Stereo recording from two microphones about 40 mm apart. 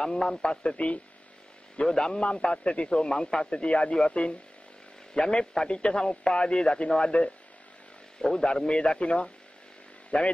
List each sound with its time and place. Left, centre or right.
0.0 s a man's voice: centre
0.7 s speech: left
1.9 s a man's voice: centre
8.2 s a man's voice: centre; by 10.3 s left